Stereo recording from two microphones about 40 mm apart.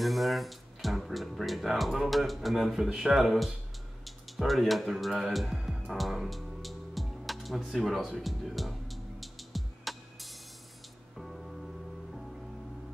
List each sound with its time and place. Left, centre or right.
0.0 s speech: centre
5.9 s music: centre